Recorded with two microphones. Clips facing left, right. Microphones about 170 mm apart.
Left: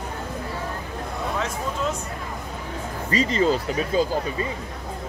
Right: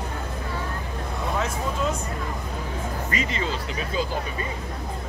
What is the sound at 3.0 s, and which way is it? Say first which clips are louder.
Speech: left 10 dB; 35° left (ahead or behind).